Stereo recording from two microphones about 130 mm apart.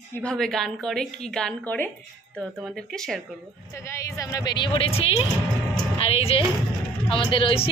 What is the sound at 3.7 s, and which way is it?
A woman's voice, 20° left (ahead or behind).